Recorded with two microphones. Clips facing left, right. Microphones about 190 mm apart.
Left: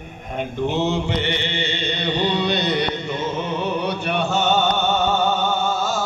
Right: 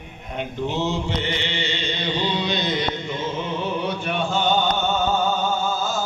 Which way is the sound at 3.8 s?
70° left (ahead or behind).